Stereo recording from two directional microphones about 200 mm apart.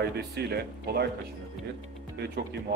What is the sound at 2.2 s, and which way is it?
Speech, 55° right (ahead or behind).